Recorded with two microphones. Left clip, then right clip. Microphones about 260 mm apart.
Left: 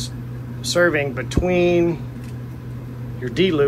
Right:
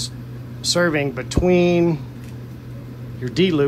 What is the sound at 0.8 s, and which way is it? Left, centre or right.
Speech, right.